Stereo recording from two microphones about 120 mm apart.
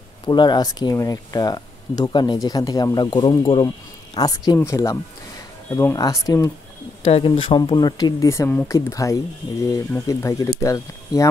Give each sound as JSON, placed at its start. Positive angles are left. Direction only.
{"t": 0.3, "sound": "speech", "side_deg": 35}
{"t": 7.1, "sound": "speech", "side_deg": 50}